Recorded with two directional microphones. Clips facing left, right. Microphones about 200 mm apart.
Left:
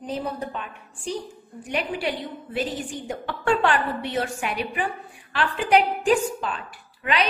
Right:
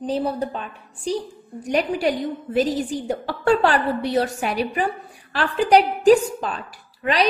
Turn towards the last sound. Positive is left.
turn(degrees=-40)  # may be behind; listen again after turning